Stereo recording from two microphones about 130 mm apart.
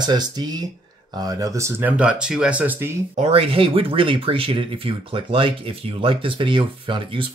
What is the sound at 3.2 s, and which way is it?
Speech, 50° right (ahead or behind).